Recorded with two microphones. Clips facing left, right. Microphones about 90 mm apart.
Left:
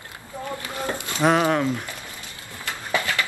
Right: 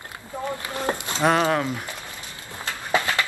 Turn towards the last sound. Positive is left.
turn(degrees=-20)  # may be behind; listen again after turning